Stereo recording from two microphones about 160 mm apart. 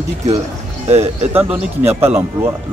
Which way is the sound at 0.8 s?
40° right (ahead or behind).